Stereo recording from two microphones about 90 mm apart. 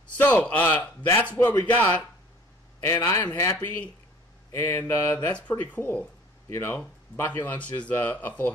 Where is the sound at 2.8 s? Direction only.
30° left (ahead or behind).